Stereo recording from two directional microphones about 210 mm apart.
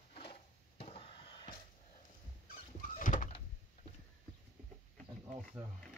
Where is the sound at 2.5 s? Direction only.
40° left (ahead or behind).